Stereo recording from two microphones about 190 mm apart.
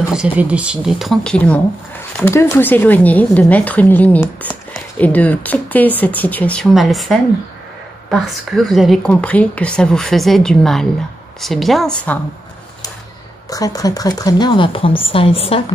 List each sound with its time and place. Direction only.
0.1 s a woman's voice: 5° right (ahead or behind)
13.5 s speech: 20° left (ahead or behind)